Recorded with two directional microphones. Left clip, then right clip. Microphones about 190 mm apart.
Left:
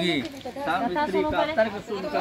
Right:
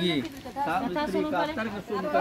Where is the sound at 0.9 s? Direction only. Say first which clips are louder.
Left 4 dB; 30° left (ahead or behind).